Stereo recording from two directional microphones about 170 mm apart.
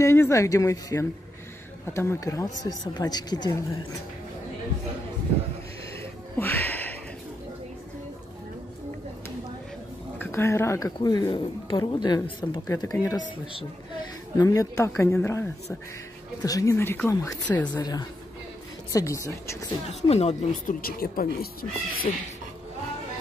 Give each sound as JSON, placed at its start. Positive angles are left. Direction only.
{"t": 0.0, "sound": "speech", "side_deg": 15}
{"t": 6.3, "sound": "a sound", "side_deg": 15}
{"t": 10.1, "sound": "a woman's voice", "side_deg": 15}
{"t": 14.3, "sound": "speech", "side_deg": 20}
{"t": 16.4, "sound": "speech", "side_deg": 20}
{"t": 19.9, "sound": "speech", "side_deg": 40}
{"t": 20.8, "sound": "speech", "side_deg": 60}